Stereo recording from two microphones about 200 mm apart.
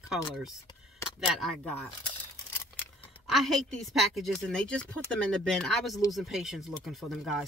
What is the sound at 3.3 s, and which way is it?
Speech, centre (ahead or behind).